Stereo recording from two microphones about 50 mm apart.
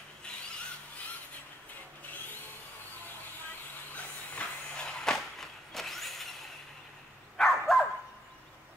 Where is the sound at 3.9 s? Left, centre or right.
Left.